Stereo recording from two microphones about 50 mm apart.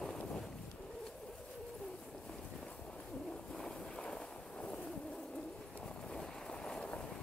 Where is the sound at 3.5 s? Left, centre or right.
Centre.